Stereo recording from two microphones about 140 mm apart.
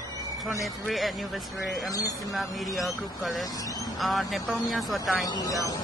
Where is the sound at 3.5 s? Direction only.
25° left (ahead or behind).